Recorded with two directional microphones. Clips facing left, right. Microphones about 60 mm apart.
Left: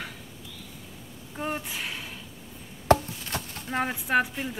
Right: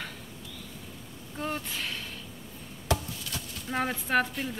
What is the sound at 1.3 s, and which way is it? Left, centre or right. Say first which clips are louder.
Speech: left 2 dB; centre.